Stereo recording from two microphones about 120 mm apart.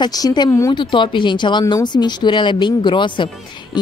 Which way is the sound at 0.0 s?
35° left (ahead or behind).